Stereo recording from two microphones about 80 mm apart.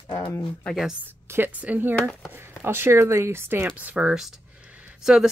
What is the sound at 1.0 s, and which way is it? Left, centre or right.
Speech, right.